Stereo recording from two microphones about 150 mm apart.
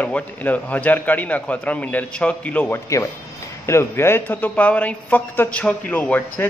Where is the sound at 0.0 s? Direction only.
10° left (ahead or behind).